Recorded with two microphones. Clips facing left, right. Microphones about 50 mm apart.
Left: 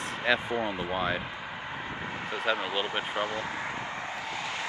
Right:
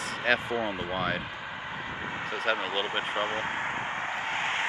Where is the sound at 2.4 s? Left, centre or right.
Right.